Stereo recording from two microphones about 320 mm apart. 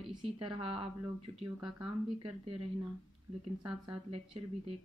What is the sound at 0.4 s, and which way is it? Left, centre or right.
Speech, centre.